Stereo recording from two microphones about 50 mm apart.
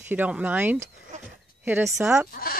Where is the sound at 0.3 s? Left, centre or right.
Right.